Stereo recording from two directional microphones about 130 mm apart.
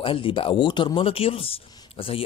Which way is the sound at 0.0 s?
45° left (ahead or behind).